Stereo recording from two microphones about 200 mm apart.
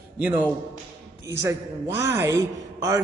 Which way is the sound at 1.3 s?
15° right (ahead or behind).